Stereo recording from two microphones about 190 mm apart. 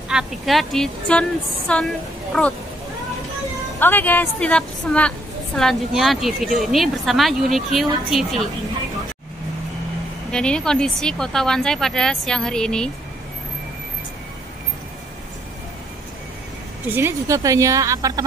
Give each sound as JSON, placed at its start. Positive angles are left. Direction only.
{"t": 0.1, "sound": "speech", "side_deg": 0}
{"t": 3.8, "sound": "a woman's voice", "side_deg": 10}
{"t": 10.3, "sound": "speech", "side_deg": 5}
{"t": 16.8, "sound": "a woman's voice", "side_deg": -10}